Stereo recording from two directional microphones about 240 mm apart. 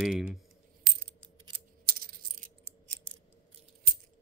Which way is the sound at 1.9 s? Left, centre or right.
Right.